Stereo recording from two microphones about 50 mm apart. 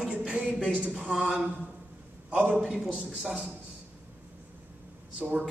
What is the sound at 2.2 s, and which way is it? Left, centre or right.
Speech, right.